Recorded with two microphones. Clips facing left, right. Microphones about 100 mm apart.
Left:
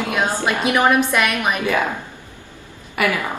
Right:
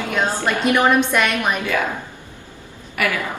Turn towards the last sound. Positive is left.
turn(degrees=25)  # may be behind; listen again after turning